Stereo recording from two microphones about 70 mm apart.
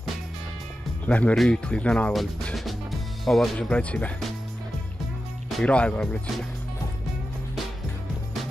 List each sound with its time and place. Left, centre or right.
1.0 s speech: left
2.5 s music: centre
3.5 s speech: centre
5.6 s speech: centre